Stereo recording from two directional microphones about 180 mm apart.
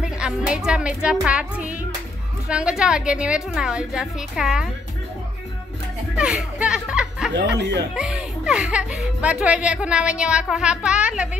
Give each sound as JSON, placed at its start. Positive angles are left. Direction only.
{"t": 0.0, "sound": "speech", "side_deg": -5}
{"t": 6.1, "sound": "music", "side_deg": -5}
{"t": 7.3, "sound": "speech", "side_deg": -75}
{"t": 7.9, "sound": "speech", "side_deg": -5}